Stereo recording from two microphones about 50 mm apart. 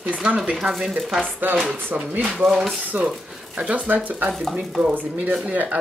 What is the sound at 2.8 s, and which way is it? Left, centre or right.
Speech, right.